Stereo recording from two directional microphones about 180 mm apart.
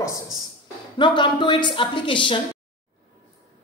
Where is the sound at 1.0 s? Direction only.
25° left (ahead or behind).